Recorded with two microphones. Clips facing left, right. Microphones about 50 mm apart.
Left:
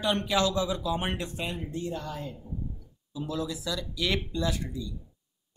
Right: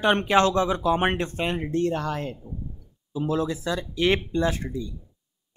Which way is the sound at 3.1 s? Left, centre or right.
Right.